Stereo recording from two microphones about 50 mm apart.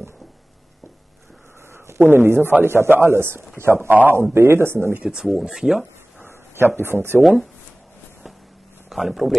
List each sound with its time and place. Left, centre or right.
2.0 s a man's voice: right
5.0 s speech: centre
6.2 s a sound: right
6.8 s a man's voice: right
8.8 s speech: centre